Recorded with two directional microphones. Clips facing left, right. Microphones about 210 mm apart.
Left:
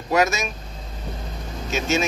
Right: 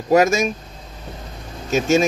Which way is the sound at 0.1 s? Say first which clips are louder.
Right 6 dB; 45° right (ahead or behind).